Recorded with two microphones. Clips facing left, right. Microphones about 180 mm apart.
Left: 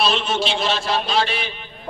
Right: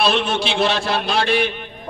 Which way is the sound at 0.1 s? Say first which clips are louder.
Right 2 dB; 55° right (ahead or behind).